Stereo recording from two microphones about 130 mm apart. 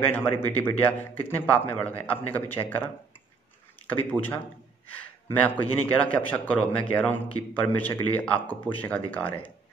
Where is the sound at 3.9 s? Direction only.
10° left (ahead or behind).